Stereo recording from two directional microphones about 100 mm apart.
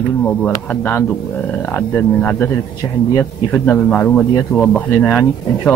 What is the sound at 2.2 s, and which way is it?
Speech, 15° left (ahead or behind).